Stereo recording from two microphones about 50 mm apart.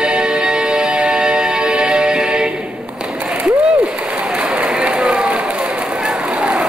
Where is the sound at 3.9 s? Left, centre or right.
Right.